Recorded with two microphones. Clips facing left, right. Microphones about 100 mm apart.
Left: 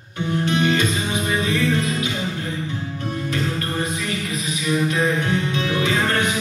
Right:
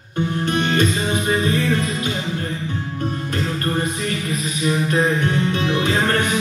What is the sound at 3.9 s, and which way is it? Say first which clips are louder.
Music: right 2 dB; 45° right (ahead or behind).